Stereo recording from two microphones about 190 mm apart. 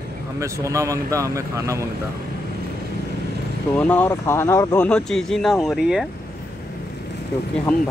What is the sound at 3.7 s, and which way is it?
Speech, 10° left (ahead or behind).